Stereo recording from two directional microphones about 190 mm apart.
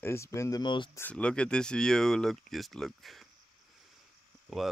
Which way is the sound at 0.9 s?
10° left (ahead or behind).